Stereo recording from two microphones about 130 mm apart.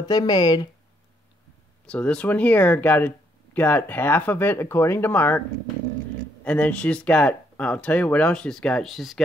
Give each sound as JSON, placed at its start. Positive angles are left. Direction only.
{"t": 0.0, "sound": "speech", "side_deg": 30}
{"t": 1.9, "sound": "speech", "side_deg": 10}
{"t": 6.4, "sound": "speech", "side_deg": 10}